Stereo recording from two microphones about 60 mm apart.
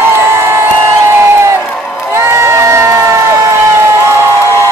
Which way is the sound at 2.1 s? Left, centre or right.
Right.